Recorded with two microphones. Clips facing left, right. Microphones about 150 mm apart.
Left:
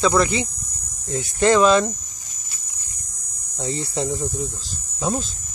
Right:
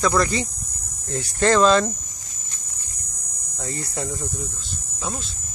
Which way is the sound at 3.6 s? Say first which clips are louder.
Left 5 dB; 20° left (ahead or behind).